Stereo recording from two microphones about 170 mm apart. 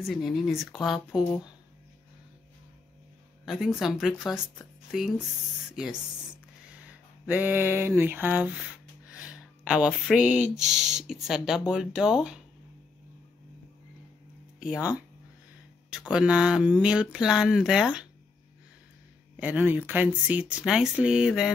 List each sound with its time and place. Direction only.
0.0 s speech: centre (ahead or behind)
3.4 s speech: 5° right (ahead or behind)
6.9 s speech: 10° right (ahead or behind)
14.6 s speech: 5° right (ahead or behind)
16.1 s speech: 5° right (ahead or behind)
19.3 s speech: 10° right (ahead or behind)